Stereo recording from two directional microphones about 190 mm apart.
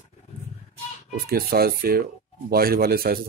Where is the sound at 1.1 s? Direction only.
50° right (ahead or behind).